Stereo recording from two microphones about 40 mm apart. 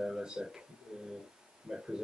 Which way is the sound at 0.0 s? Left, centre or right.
Centre.